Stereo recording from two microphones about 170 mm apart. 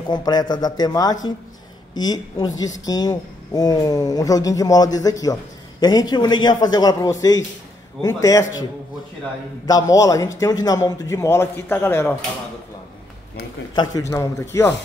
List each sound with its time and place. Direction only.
0.1 s a woman's voice: 25° left (ahead or behind)
9.7 s a woman's voice: 20° left (ahead or behind)
13.7 s a man's voice: 20° left (ahead or behind)